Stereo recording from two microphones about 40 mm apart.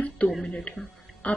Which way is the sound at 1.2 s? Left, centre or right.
Left.